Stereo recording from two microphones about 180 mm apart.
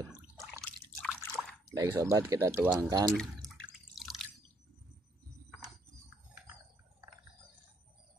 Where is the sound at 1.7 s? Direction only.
20° right (ahead or behind).